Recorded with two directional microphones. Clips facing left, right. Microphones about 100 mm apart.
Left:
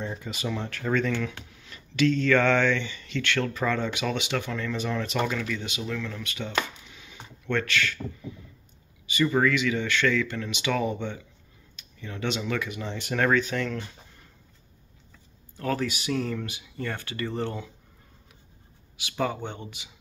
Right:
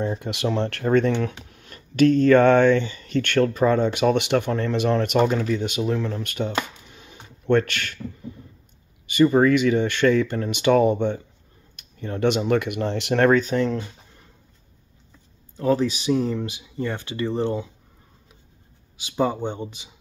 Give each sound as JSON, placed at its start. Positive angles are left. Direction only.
{"t": 0.2, "sound": "speech", "side_deg": -65}
{"t": 0.8, "sound": "speech", "side_deg": -50}
{"t": 5.2, "sound": "speech", "side_deg": -40}
{"t": 6.2, "sound": "speech", "side_deg": -50}
{"t": 6.9, "sound": "a sound", "side_deg": -45}
{"t": 9.2, "sound": "speech", "side_deg": -35}
{"t": 13.3, "sound": "speech", "side_deg": -35}
{"t": 15.5, "sound": "speech", "side_deg": -20}
{"t": 18.9, "sound": "speech", "side_deg": -20}